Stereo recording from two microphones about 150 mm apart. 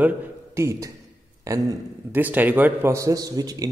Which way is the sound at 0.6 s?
20° right (ahead or behind).